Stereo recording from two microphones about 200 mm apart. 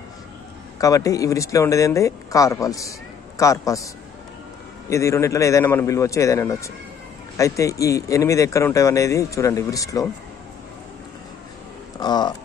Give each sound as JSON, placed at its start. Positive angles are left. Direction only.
{"t": 0.7, "sound": "speech", "side_deg": 15}
{"t": 12.0, "sound": "speech", "side_deg": 20}